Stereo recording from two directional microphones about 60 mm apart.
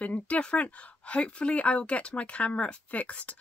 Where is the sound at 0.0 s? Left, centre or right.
Left.